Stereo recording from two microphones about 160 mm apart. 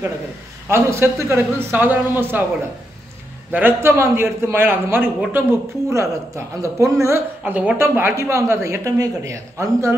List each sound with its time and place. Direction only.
0.7 s a man's voice: 15° right (ahead or behind)
3.5 s a man's voice: 15° right (ahead or behind)